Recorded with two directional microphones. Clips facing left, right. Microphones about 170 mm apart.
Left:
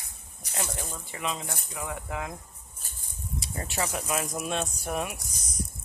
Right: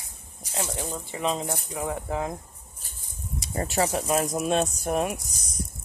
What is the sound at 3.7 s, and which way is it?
Speech, 30° right (ahead or behind).